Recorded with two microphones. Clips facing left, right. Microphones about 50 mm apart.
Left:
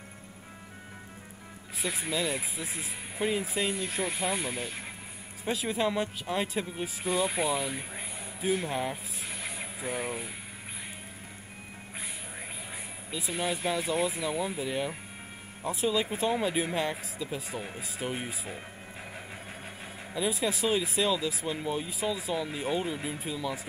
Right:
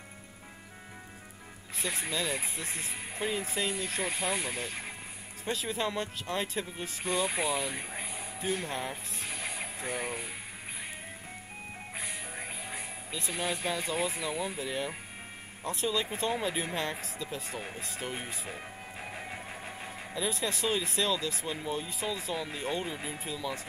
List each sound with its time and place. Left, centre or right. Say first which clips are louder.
1.8 s speech: left 2 dB; centre
12.0 s speech: right 1 dB; centre
20.2 s speech: left 3 dB; centre